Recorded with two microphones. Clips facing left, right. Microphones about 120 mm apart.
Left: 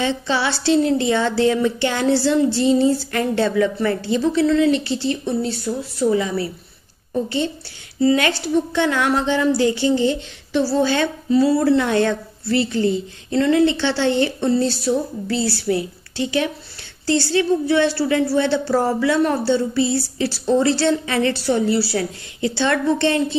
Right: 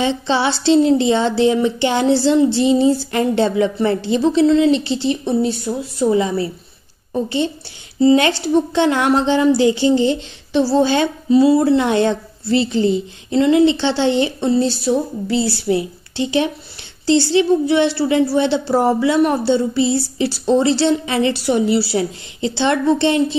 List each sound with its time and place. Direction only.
0.0 s a woman's voice: 25° right (ahead or behind)